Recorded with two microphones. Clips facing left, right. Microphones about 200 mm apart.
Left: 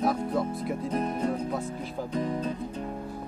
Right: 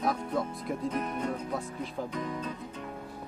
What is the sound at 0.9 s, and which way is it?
Speech, 35° left (ahead or behind).